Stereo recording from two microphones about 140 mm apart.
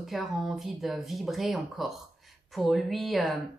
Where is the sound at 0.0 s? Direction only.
Centre (ahead or behind).